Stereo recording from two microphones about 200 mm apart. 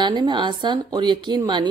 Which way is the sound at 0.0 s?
20° right (ahead or behind).